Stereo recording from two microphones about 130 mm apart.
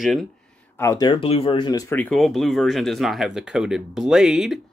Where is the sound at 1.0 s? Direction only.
40° left (ahead or behind).